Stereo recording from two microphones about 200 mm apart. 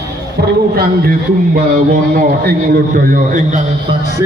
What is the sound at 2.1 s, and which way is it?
A man's voice, 45° right (ahead or behind).